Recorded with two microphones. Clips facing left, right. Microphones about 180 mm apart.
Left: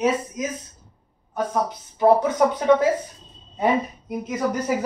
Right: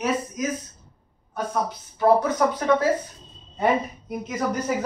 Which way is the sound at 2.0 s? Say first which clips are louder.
Left 2 dB; 20° left (ahead or behind).